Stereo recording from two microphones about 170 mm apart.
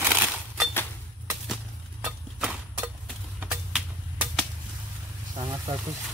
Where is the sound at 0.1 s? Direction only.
5° right (ahead or behind).